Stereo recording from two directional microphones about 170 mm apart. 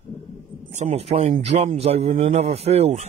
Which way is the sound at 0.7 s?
45° right (ahead or behind).